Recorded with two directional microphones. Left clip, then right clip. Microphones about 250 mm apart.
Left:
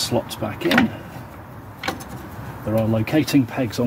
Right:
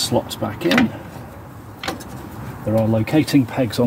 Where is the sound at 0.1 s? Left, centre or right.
Right.